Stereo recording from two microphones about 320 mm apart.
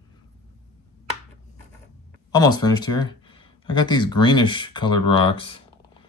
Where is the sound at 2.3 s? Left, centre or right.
Centre.